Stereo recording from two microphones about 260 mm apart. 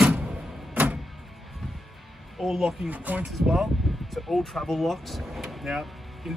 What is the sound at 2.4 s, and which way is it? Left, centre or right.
Speech, centre.